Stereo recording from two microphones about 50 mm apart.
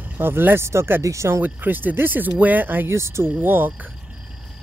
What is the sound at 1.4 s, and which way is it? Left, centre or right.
Speech, right.